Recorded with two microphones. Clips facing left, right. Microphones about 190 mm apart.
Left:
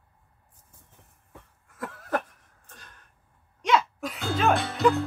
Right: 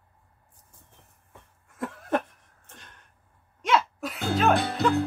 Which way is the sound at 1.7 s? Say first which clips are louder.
Right 2 dB; 25° right (ahead or behind).